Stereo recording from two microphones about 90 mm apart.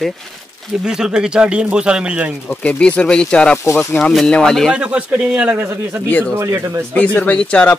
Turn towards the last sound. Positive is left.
turn(degrees=15)  # may be behind; listen again after turning